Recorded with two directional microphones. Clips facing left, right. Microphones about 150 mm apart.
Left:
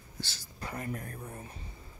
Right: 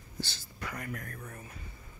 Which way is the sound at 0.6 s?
30° left (ahead or behind).